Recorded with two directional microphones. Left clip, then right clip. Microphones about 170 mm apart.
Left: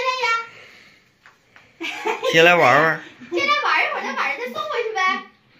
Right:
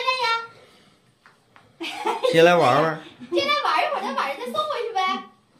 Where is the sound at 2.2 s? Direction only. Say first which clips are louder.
Left 2 dB; 10° right (ahead or behind).